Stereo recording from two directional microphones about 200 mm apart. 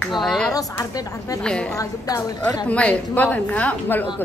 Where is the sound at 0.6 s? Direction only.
15° left (ahead or behind).